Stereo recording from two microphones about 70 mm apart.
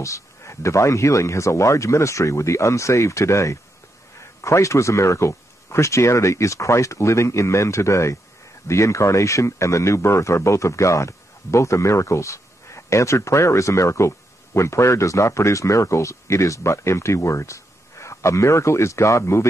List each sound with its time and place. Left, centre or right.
0.0 s speech: left